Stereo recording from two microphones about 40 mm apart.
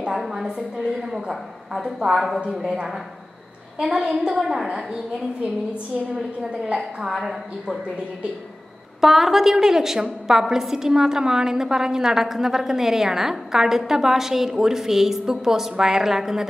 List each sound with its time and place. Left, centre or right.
0.1 s a woman's voice: centre
1.8 s a woman's voice: centre
2.1 s a woman's voice: centre
4.0 s a woman's voice: right
6.1 s a woman's voice: centre
6.8 s a woman's voice: centre
9.0 s a woman's voice: centre